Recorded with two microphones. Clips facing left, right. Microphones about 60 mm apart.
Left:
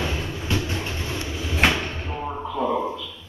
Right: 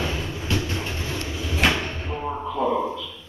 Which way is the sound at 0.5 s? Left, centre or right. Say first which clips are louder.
Even; centre.